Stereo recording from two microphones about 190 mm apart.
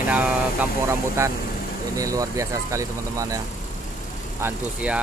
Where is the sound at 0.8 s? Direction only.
15° right (ahead or behind).